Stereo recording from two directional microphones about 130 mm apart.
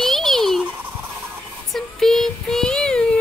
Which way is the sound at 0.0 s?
Centre (ahead or behind).